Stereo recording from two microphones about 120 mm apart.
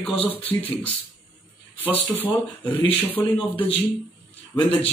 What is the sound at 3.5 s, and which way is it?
Speech, 50° left (ahead or behind).